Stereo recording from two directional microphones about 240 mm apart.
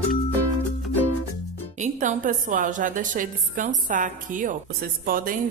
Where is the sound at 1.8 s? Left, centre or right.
Right.